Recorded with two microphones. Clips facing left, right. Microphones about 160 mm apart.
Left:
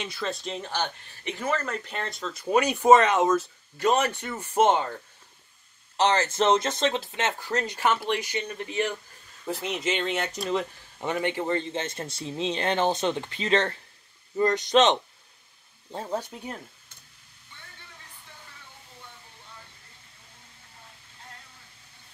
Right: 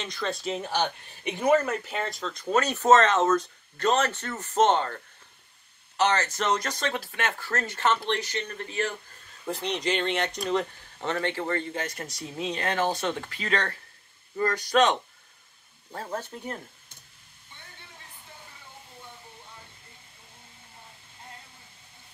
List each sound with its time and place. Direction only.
0.0 s speech: 5° left (ahead or behind)
5.9 s speech: 30° left (ahead or behind)
9.5 s speech: 5° left (ahead or behind)